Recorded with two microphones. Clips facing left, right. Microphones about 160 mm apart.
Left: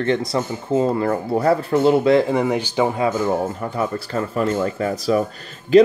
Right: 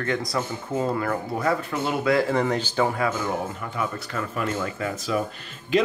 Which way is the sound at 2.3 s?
10° left (ahead or behind).